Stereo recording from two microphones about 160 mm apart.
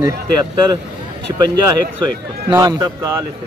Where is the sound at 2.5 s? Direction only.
20° right (ahead or behind).